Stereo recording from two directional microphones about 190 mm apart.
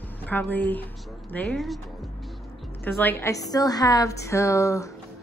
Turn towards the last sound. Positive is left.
turn(degrees=15)  # may be behind; listen again after turning